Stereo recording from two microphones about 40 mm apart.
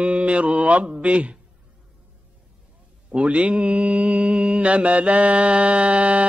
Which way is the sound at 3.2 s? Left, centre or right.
Right.